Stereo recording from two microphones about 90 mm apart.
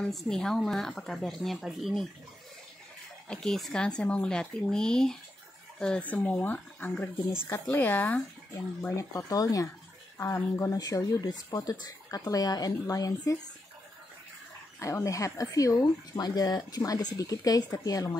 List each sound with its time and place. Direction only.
0.0 s a woman's voice: 5° left (ahead or behind)
3.3 s speech: 5° left (ahead or behind); by 8.9 s 20° left (ahead or behind)
8.9 s speech: 40° left (ahead or behind)
14.8 s speech: 35° left (ahead or behind)